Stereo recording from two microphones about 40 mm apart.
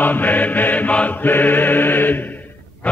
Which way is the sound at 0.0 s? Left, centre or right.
Left.